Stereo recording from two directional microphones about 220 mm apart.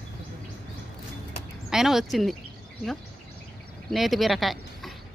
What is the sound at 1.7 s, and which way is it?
Speech, centre (ahead or behind).